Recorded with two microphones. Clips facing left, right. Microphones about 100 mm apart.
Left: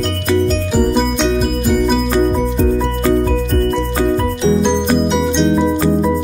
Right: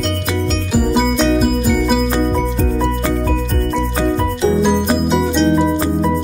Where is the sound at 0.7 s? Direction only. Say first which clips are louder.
Right 2 dB; 5° right (ahead or behind).